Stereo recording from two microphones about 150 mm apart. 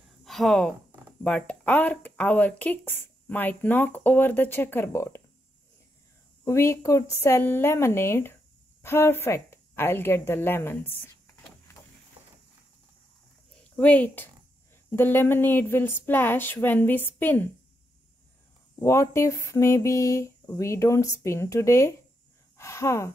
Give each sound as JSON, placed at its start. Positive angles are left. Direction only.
{"t": 0.2, "sound": "speech", "side_deg": 0}
{"t": 6.4, "sound": "a woman's voice", "side_deg": 20}
{"t": 13.7, "sound": "speech", "side_deg": 10}
{"t": 18.8, "sound": "speech", "side_deg": 20}